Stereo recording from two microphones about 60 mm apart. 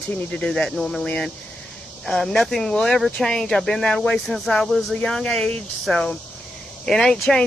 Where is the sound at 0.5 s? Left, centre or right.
Centre.